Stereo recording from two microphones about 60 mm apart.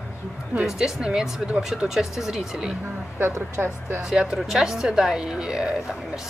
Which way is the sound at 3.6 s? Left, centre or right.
Right.